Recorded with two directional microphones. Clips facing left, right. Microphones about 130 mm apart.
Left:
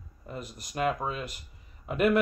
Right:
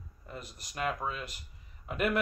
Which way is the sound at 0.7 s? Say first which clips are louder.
Left 5 dB; 25° left (ahead or behind).